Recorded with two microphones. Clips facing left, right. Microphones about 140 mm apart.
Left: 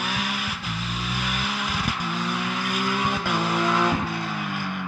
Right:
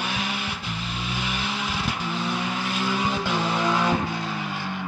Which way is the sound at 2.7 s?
10° left (ahead or behind).